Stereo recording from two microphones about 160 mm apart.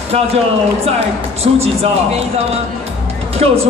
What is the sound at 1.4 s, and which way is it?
Speech, 40° right (ahead or behind).